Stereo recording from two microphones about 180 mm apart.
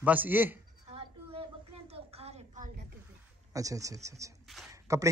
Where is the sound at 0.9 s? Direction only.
30° right (ahead or behind).